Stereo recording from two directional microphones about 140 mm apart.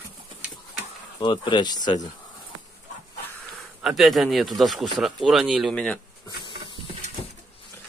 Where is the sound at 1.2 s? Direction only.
35° left (ahead or behind).